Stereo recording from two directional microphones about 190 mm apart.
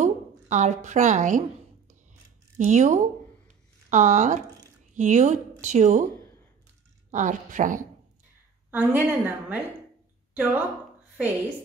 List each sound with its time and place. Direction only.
0.0 s speech: 40° right (ahead or behind)
2.5 s speech: 40° right (ahead or behind)
7.1 s speech: 40° right (ahead or behind)
8.6 s a woman's voice: 10° right (ahead or behind)